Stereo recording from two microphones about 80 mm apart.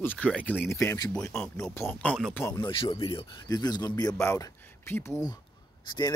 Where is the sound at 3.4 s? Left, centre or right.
Left.